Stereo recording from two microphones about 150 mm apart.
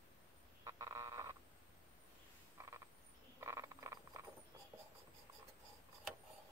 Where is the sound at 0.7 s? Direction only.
20° right (ahead or behind).